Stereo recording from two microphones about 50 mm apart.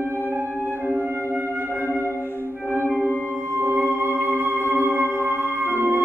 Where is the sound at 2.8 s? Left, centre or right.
Right.